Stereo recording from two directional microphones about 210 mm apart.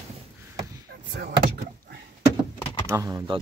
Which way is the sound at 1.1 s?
50° right (ahead or behind).